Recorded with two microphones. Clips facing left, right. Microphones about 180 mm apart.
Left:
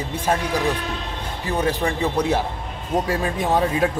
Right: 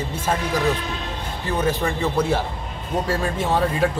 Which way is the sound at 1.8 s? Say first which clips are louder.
Even; 15° left (ahead or behind).